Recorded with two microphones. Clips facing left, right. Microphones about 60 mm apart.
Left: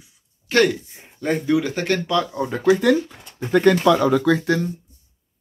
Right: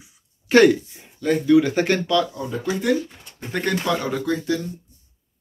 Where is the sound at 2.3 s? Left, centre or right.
Left.